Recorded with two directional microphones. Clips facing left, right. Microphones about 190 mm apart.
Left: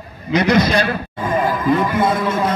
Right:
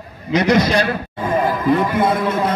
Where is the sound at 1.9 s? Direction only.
60° right (ahead or behind).